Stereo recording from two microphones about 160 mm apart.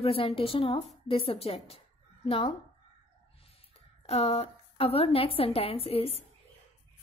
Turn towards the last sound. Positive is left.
turn(degrees=35)  # may be behind; listen again after turning